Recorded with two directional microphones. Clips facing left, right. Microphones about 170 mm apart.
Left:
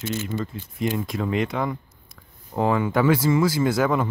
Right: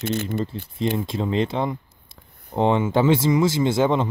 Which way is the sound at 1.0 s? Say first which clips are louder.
Right 2 dB; 25° right (ahead or behind).